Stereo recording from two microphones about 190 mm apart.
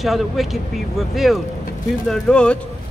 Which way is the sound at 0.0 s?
Centre (ahead or behind).